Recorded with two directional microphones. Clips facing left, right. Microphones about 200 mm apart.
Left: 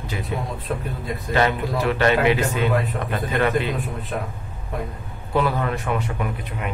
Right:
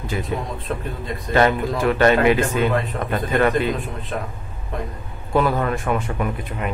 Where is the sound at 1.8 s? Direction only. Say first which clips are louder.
Right 3 dB; 45° right (ahead or behind).